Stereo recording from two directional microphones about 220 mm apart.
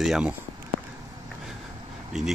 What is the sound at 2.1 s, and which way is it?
Speech, centre (ahead or behind).